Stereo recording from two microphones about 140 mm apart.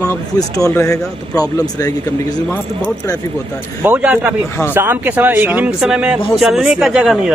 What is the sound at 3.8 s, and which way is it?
Speech, 10° right (ahead or behind).